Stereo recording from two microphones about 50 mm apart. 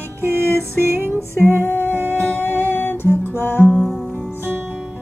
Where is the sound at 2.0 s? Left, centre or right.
Left.